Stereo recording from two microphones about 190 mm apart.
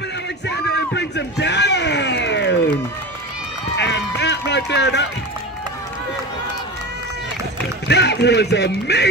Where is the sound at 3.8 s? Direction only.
65° left (ahead or behind).